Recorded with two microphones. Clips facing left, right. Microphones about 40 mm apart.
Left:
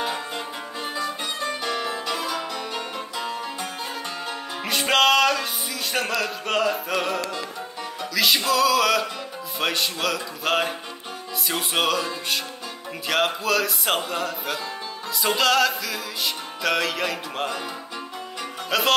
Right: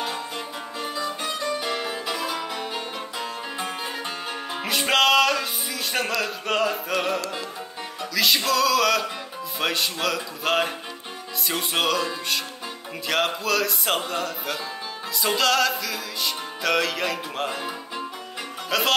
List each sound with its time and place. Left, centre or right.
1.6 s music: centre
4.6 s music: centre
18.7 s music: centre